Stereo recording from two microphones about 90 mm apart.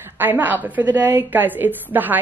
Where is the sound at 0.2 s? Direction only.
20° right (ahead or behind).